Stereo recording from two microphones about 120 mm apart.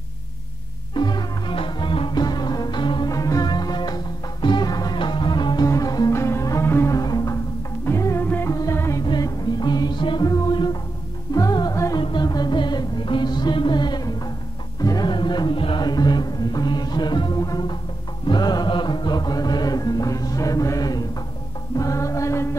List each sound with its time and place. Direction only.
0.9 s music: 40° left (ahead or behind)
9.0 s music: 35° left (ahead or behind)